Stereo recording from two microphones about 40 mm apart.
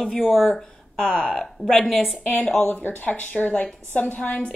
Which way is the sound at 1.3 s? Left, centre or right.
Centre.